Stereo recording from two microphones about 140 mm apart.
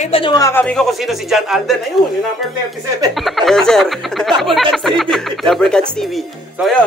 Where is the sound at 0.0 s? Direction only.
45° left (ahead or behind).